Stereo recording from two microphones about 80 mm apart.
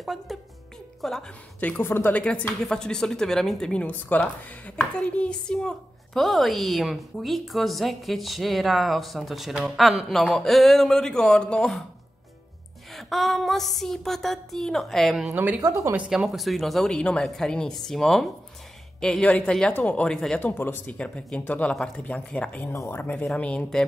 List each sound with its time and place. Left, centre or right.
0.0 s a woman's voice: centre
1.8 s speech: left
2.1 s a woman's voice: centre
12.9 s a woman's voice: centre
15.3 s a woman's voice: centre
15.6 s a woman's voice: right
16.1 s a woman's voice: centre; by 20.9 s left
21.0 s speech: centre
22.8 s speech: left